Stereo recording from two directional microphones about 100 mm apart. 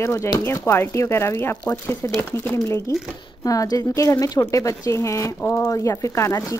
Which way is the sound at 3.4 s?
35° left (ahead or behind).